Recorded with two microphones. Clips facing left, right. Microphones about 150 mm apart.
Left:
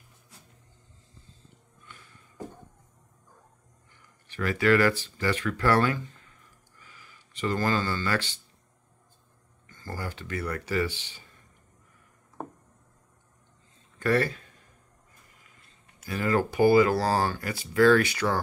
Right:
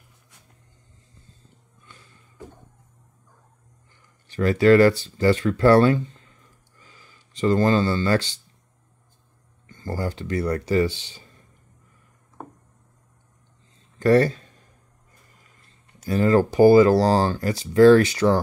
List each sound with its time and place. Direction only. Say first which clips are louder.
4.3 s speech: right 8 dB; 30° right (ahead or behind)
6.8 s a sound: right 1 dB; 30° right (ahead or behind)
9.7 s speech: right 8 dB; 25° right (ahead or behind)
14.0 s speech: right 8 dB; 35° right (ahead or behind)
16.0 s speech: right 8 dB; 35° right (ahead or behind)